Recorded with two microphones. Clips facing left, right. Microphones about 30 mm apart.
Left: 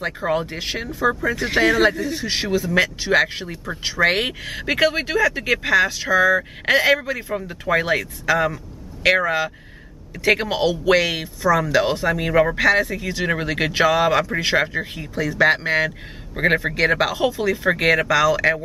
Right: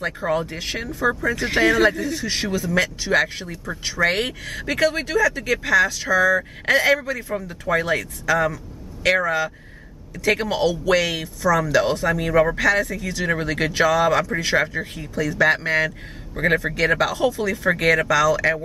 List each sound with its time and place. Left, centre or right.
0.0 s speech: centre
0.7 s speech: centre